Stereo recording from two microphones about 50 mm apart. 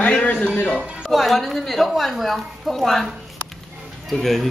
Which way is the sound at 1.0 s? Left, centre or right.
Centre.